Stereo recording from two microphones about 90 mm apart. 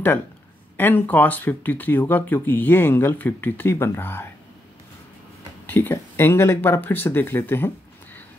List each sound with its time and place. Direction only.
0.7 s speech: 20° left (ahead or behind)
5.7 s speech: 25° left (ahead or behind)